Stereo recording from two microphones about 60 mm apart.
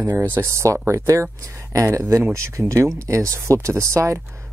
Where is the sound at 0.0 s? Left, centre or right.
Right.